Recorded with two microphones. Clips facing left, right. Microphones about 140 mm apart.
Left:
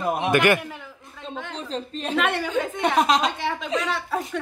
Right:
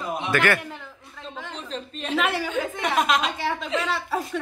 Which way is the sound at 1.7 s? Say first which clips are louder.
Left 1 dB; 35° left (ahead or behind).